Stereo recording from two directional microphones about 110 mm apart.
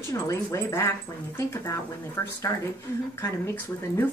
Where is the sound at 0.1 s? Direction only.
25° left (ahead or behind).